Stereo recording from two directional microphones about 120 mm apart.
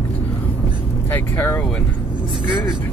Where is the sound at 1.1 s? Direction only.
20° left (ahead or behind).